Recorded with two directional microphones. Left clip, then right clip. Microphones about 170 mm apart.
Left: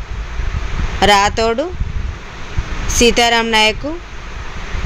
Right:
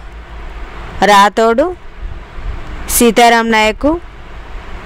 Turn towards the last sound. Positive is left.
turn(degrees=-70)  # may be behind; listen again after turning